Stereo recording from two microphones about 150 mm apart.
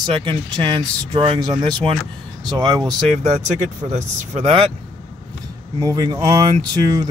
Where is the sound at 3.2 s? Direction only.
50° right (ahead or behind).